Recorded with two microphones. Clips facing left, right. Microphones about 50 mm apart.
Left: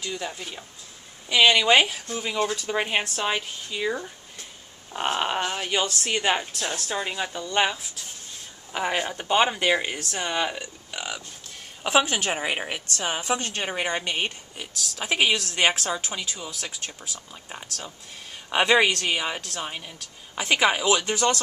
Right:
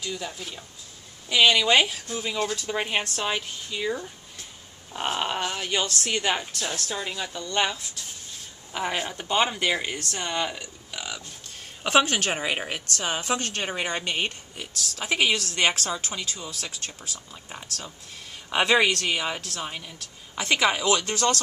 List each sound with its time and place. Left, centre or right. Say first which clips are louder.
0.1 s a woman's voice: left 1 dB; centre
12.8 s a woman's voice: left 1 dB; centre